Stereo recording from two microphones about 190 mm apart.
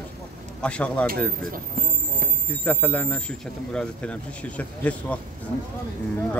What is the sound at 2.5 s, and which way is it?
Speech, 10° left (ahead or behind).